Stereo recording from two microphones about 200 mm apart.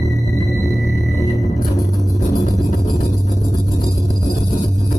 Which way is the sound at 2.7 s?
15° left (ahead or behind).